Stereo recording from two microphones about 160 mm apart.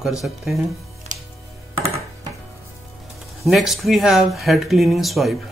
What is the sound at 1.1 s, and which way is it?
Music, 50° right (ahead or behind).